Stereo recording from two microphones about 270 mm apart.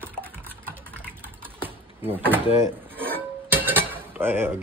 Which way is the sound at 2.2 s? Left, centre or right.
Centre.